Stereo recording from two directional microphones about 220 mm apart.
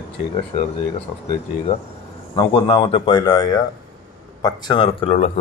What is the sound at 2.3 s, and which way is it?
Speech, 25° left (ahead or behind).